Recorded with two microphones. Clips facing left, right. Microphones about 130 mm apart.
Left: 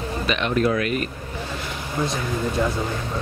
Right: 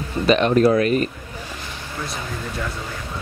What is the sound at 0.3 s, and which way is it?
Speech, 35° right (ahead or behind).